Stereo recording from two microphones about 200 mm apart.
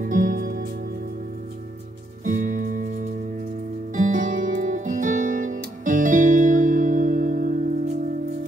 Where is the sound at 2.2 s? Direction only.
45° right (ahead or behind).